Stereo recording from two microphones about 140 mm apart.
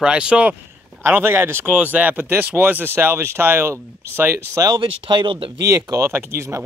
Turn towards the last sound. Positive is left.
turn(degrees=-20)  # may be behind; listen again after turning